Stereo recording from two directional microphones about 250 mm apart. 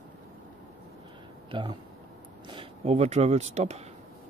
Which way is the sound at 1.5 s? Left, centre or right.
Centre.